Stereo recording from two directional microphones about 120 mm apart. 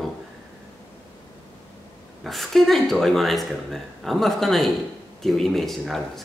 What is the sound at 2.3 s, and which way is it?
Speech, centre (ahead or behind).